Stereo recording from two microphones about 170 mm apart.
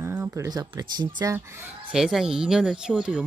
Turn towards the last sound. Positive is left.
turn(degrees=-5)  # may be behind; listen again after turning